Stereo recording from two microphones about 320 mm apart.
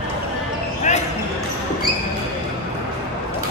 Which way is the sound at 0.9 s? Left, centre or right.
Left.